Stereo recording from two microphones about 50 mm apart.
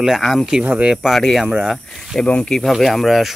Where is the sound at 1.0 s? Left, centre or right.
Centre.